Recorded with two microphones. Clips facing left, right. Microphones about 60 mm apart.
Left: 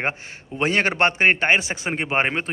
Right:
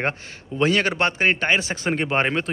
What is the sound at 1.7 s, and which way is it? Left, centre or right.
Speech, centre.